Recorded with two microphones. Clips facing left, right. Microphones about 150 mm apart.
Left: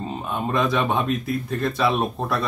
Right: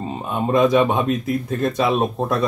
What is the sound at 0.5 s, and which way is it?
Speech, 20° right (ahead or behind).